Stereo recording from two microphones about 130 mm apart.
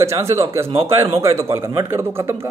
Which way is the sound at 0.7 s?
50° right (ahead or behind).